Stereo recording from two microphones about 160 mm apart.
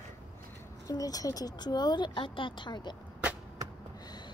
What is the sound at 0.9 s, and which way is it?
Speech, 20° left (ahead or behind).